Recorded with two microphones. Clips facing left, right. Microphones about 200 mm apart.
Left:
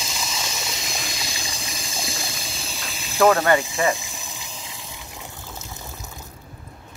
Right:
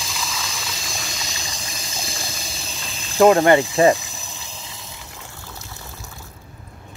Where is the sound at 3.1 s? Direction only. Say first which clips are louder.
Right 4 dB; 30° right (ahead or behind).